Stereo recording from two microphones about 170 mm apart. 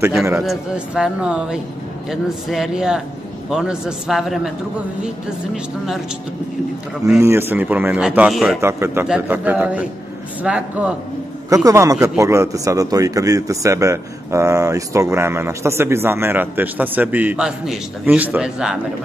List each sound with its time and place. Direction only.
0.4 s speech: 5° right (ahead or behind)
7.2 s a man's voice: 15° right (ahead or behind)
8.5 s a man's voice: 15° right (ahead or behind)
11.4 s a man's voice: 20° right (ahead or behind); by 18.8 s 5° right (ahead or behind)